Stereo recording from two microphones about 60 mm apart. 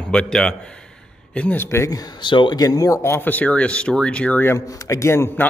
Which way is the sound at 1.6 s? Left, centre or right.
Left.